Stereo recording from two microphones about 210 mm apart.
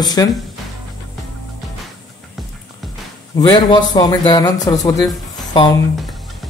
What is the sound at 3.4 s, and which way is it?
Speech, 20° left (ahead or behind).